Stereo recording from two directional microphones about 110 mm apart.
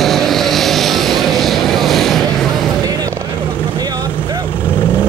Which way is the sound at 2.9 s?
35° right (ahead or behind).